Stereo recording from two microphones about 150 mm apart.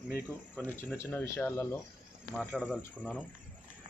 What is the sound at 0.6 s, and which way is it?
Speech, 10° left (ahead or behind).